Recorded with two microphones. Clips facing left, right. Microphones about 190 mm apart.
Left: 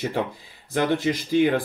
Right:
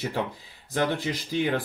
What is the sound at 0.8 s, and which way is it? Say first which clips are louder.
Speech: left 4 dB; 15° left (ahead or behind).